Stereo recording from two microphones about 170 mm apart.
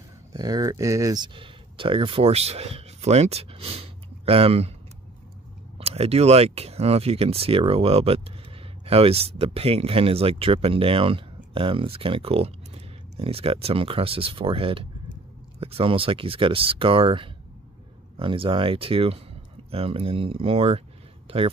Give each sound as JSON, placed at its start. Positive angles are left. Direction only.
{"t": 0.3, "sound": "speech", "side_deg": -20}
{"t": 5.8, "sound": "speech", "side_deg": -35}